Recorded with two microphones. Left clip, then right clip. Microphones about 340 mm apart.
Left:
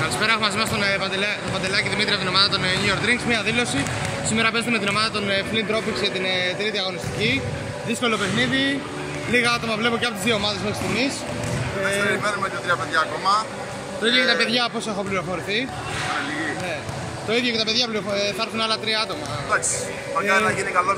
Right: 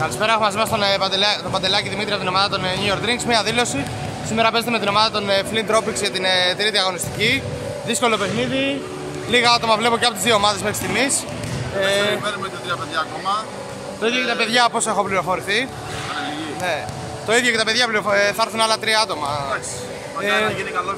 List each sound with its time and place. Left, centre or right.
0.0 s speech: centre
11.8 s speech: centre
12.3 s speech: centre
17.3 s speech: centre